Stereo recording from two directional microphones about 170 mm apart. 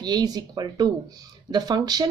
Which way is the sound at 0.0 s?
25° right (ahead or behind).